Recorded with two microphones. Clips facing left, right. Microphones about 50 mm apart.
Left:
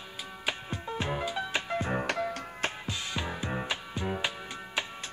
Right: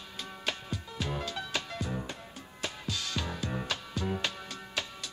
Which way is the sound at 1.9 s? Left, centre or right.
Left.